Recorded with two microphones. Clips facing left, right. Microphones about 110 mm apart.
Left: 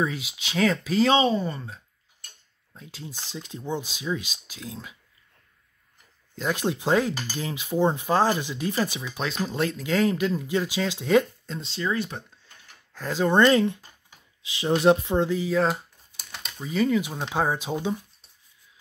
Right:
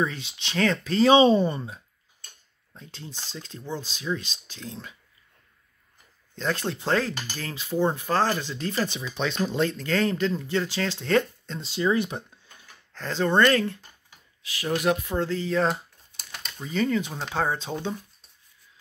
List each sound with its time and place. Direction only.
0.0 s speech: 5° left (ahead or behind)
1.1 s speech: 25° right (ahead or behind)
2.7 s speech: 5° left (ahead or behind)
6.3 s speech: 10° left (ahead or behind)
11.7 s speech: 15° right (ahead or behind)
12.9 s speech: 10° left (ahead or behind)